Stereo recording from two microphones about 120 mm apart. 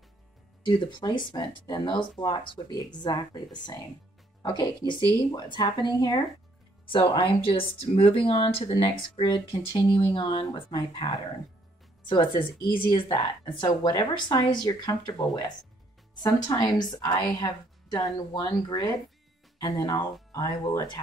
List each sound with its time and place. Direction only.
0.7 s a woman's voice: 40° left (ahead or behind)
6.9 s a woman's voice: 45° left (ahead or behind)